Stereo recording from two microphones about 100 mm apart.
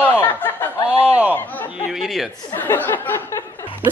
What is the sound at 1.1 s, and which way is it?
Speech, 15° right (ahead or behind).